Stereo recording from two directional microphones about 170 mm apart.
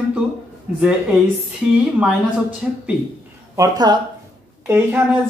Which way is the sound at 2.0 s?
5° right (ahead or behind).